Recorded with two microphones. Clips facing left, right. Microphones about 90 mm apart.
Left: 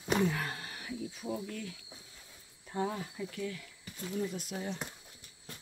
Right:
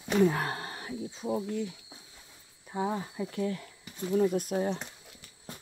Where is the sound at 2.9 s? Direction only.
30° right (ahead or behind).